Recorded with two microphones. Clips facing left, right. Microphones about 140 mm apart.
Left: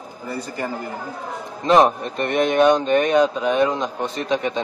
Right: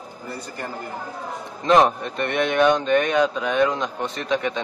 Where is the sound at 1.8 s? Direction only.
35° left (ahead or behind).